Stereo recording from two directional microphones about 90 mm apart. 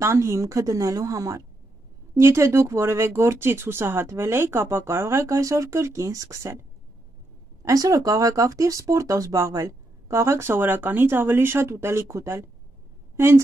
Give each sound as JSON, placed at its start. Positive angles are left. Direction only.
{"t": 0.0, "sound": "speech", "side_deg": -30}
{"t": 7.6, "sound": "a woman's voice", "side_deg": -40}